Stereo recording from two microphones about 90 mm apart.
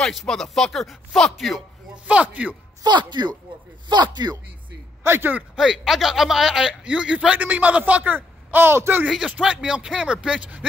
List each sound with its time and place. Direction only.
0.0 s speech: 5° left (ahead or behind)
2.0 s a man's voice: 15° right (ahead or behind)
2.8 s speech: 55° right (ahead or behind)
5.0 s speech: 25° right (ahead or behind)
5.6 s a man's voice: 5° right (ahead or behind); by 9.0 s 25° right (ahead or behind)
9.0 s a man's voice: 5° right (ahead or behind)